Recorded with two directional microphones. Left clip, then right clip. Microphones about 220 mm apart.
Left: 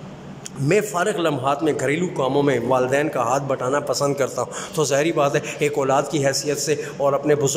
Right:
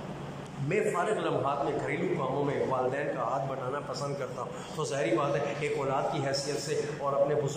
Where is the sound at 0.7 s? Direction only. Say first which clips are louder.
Left 9 dB; 50° left (ahead or behind).